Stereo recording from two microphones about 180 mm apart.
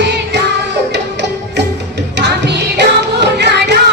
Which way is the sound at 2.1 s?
70° right (ahead or behind).